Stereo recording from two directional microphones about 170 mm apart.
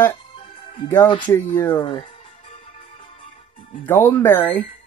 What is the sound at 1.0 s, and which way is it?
Speech, 30° left (ahead or behind).